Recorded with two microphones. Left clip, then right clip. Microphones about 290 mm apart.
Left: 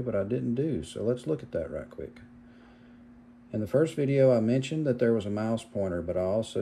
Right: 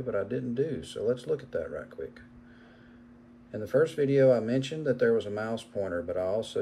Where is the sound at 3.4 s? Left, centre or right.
Centre.